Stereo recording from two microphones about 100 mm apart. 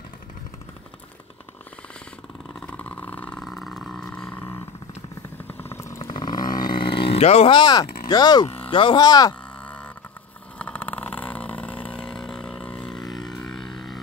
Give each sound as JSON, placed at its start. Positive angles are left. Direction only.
{"t": 2.6, "sound": "vehicle", "side_deg": 15}
{"t": 3.4, "sound": "vehicle", "side_deg": 5}
{"t": 6.0, "sound": "a sound", "side_deg": 45}
{"t": 7.5, "sound": "speech", "side_deg": 45}
{"t": 8.6, "sound": "speech", "side_deg": 60}
{"t": 9.0, "sound": "speech", "side_deg": 40}
{"t": 9.6, "sound": "a sound", "side_deg": 15}
{"t": 10.6, "sound": "vehicle", "side_deg": 10}
{"t": 13.3, "sound": "a sound", "side_deg": 5}